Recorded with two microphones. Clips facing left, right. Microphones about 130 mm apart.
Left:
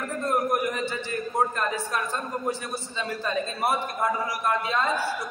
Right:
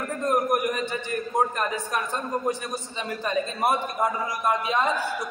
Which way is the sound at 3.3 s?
20° right (ahead or behind).